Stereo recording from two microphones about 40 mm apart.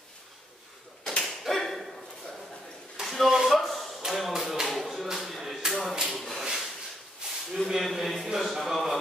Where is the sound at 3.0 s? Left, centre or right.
Centre.